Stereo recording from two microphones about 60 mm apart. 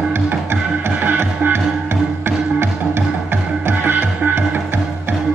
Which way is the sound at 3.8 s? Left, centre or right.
Right.